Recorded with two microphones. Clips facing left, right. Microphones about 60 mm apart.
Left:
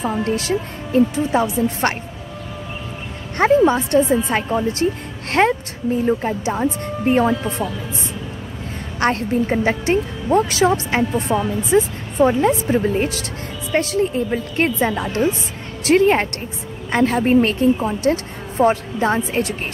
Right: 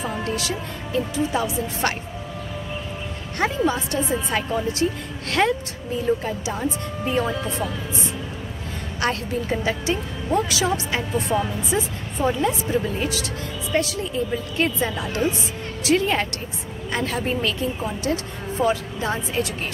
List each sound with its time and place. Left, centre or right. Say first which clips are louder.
0.2 s speech: left 6 dB; left
3.3 s speech: left 8 dB; left
9.0 s a woman's voice: left 6 dB; left